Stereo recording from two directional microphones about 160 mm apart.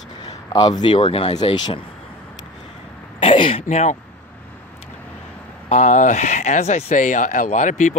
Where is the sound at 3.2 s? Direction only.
35° left (ahead or behind).